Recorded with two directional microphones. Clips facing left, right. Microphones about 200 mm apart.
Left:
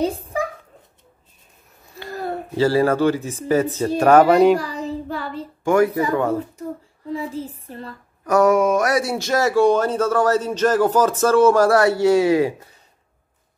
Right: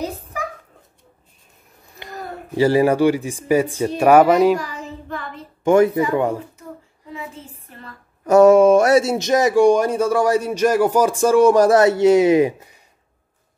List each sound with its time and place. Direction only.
0.0 s a sound: 30° left (ahead or behind)
2.5 s speech: 15° right (ahead or behind)
4.6 s child singing: 35° left (ahead or behind)
5.6 s speech: 20° right (ahead or behind)
7.1 s a sound: 35° left (ahead or behind)
8.3 s speech: 25° right (ahead or behind)